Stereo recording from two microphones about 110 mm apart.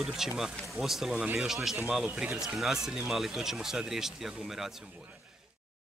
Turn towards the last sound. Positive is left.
turn(degrees=-5)  # may be behind; listen again after turning